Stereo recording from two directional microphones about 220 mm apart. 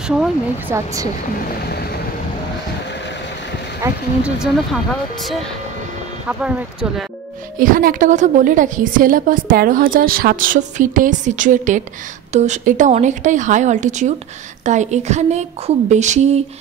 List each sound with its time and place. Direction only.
0.2 s speech: 10° right (ahead or behind)
3.8 s speech: 5° right (ahead or behind)
6.2 s speech: 5° right (ahead or behind)
7.5 s a woman's voice: 40° right (ahead or behind)